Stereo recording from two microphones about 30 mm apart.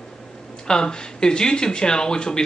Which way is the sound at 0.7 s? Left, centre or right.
Left.